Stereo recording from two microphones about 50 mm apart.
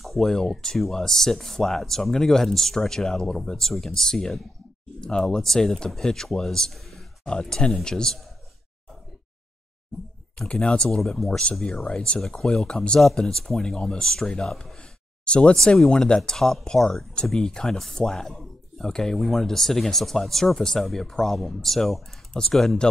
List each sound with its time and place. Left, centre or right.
0.0 s a sound: centre
0.3 s speech: centre
10.5 s speech: left
10.9 s speech: centre; by 15.5 s left
15.5 s speech: centre